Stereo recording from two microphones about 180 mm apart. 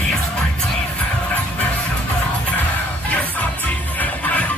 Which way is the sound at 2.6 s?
10° left (ahead or behind).